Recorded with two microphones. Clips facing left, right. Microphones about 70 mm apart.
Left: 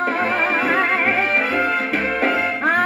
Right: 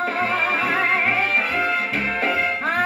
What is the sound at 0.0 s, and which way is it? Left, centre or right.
Music, left.